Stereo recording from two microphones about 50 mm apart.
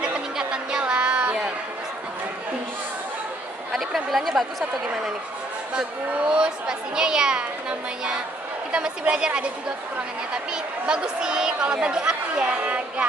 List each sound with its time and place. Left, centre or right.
0.4 s a sound: centre
3.7 s speech: centre
5.8 s a woman's voice: centre
9.1 s a woman's voice: centre
12.4 s a woman's voice: right